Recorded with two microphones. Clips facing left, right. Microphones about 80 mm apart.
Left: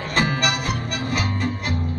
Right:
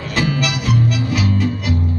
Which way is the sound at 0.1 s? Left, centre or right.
Left.